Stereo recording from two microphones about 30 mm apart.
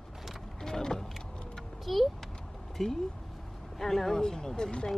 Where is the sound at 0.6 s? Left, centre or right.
Centre.